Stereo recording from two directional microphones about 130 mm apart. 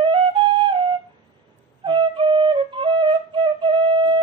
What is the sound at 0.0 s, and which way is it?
Flute, 40° right (ahead or behind).